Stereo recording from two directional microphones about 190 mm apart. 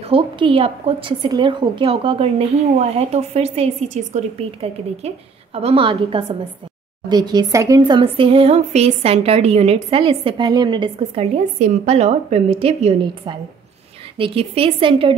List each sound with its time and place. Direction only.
0.1 s a woman's voice: 30° right (ahead or behind)
11.3 s a woman's voice: 40° right (ahead or behind)